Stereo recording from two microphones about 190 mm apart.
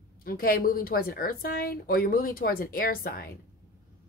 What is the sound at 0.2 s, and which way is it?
A woman's voice, 50° left (ahead or behind).